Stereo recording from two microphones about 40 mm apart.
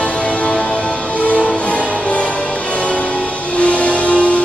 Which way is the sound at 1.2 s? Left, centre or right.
Left.